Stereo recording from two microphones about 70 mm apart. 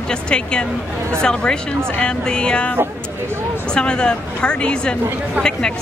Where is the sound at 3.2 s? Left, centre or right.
Right.